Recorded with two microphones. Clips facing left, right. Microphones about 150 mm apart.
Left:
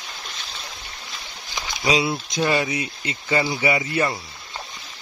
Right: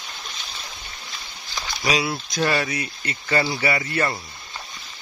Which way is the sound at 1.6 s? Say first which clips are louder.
Left 2 dB; 20° left (ahead or behind).